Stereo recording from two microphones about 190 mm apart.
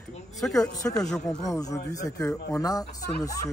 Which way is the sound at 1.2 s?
15° left (ahead or behind).